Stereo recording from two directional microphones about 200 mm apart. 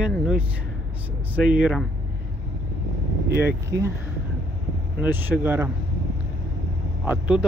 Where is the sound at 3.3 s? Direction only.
15° right (ahead or behind).